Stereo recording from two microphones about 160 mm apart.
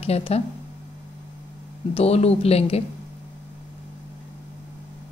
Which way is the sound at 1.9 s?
40° left (ahead or behind).